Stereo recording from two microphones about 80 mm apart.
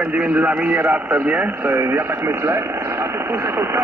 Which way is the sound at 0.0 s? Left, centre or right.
Centre.